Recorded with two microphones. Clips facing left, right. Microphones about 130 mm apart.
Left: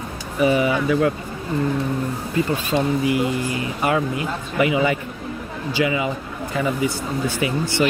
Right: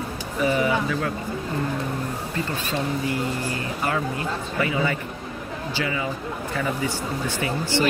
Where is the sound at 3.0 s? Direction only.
15° left (ahead or behind).